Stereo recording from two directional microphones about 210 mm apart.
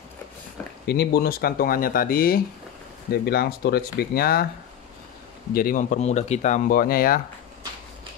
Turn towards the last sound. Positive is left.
turn(degrees=45)  # may be behind; listen again after turning